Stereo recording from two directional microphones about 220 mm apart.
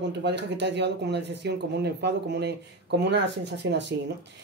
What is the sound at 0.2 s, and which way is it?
Speech, 50° right (ahead or behind).